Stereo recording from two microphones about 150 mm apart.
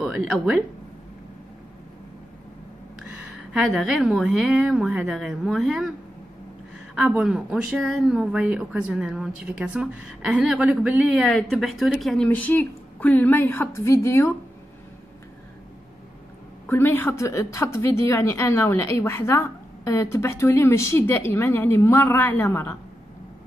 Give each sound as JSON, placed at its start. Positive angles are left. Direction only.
{"t": 0.0, "sound": "speech", "side_deg": 0}
{"t": 3.5, "sound": "a woman's voice", "side_deg": -5}
{"t": 7.0, "sound": "speech", "side_deg": -5}
{"t": 11.2, "sound": "a woman's voice", "side_deg": 5}
{"t": 16.6, "sound": "a woman's voice", "side_deg": 15}